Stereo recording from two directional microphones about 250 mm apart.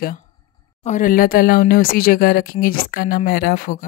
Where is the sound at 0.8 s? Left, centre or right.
Left.